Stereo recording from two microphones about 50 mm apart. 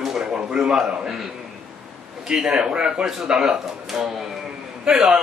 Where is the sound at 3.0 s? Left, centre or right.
Centre.